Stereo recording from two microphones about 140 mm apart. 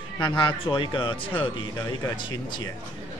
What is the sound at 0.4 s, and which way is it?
Speech, 35° left (ahead or behind).